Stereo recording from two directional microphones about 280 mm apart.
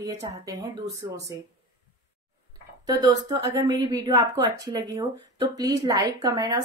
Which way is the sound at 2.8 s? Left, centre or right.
Centre.